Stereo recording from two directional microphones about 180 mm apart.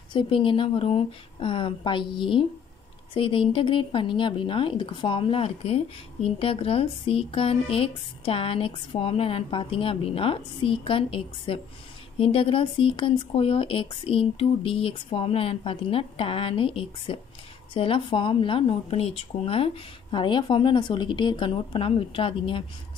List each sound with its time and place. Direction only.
0.1 s speech: 30° left (ahead or behind)